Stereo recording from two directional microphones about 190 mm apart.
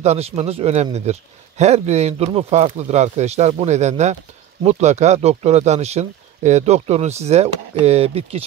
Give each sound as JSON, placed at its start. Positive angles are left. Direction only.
{"t": 0.0, "sound": "speech", "side_deg": -35}